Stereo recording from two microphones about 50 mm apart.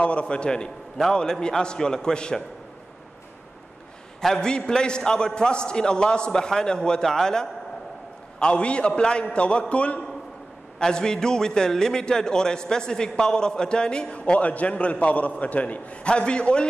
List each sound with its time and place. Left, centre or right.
0.0 s a man's voice: left
4.2 s a man's voice: centre
10.8 s a man's voice: centre